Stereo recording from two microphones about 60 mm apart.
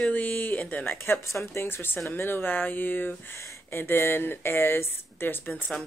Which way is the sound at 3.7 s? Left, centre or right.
Left.